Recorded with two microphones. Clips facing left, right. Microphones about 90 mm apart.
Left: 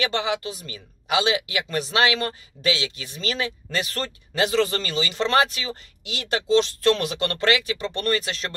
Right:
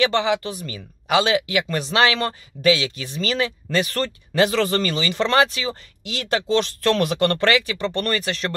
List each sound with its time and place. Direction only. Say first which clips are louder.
0.0 s speech: right 5 dB; 30° right (ahead or behind)